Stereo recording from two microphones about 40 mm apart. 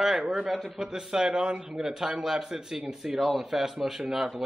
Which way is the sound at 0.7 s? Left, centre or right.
Centre.